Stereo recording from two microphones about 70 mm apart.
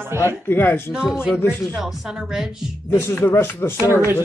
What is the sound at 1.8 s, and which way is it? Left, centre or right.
Speech, centre.